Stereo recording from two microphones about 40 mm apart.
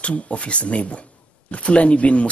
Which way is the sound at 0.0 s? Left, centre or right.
Left.